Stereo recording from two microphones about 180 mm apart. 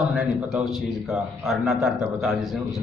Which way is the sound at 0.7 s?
Centre (ahead or behind).